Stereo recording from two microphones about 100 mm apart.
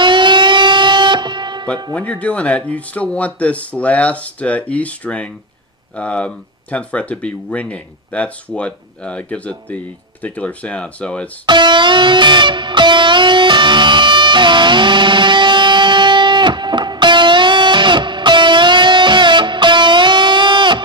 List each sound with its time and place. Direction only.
0.0 s music: 50° right (ahead or behind)
2.0 s speech: 15° left (ahead or behind)
11.4 s music: 50° right (ahead or behind)